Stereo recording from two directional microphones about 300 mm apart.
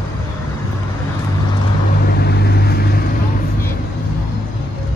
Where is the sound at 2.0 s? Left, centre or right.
Left.